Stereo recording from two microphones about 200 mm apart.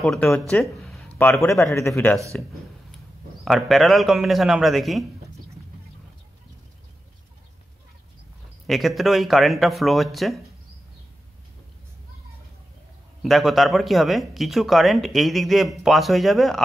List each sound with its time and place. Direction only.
0.0 s speech: centre (ahead or behind)
1.1 s a sound: 10° left (ahead or behind)
1.6 s speech: 15° left (ahead or behind)
8.6 s speech: centre (ahead or behind)
13.2 s speech: centre (ahead or behind)